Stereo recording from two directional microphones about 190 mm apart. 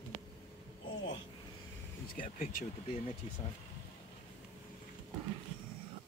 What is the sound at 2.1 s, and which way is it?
Speech, 45° left (ahead or behind).